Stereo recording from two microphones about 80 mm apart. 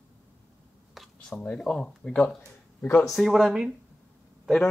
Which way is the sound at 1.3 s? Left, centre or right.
Centre.